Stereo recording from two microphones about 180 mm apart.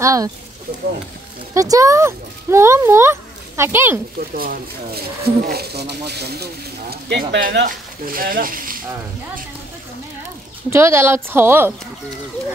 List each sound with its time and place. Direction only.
0.0 s a woman's voice: 20° right (ahead or behind)
1.5 s speech: 20° right (ahead or behind)
4.4 s speech: 55° right (ahead or behind)
10.7 s a woman's voice: 15° right (ahead or behind)